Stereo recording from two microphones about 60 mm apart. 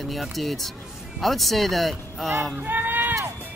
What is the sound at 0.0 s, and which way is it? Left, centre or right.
Speech, centre.